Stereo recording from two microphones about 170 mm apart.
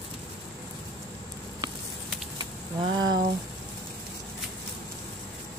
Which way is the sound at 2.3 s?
25° right (ahead or behind).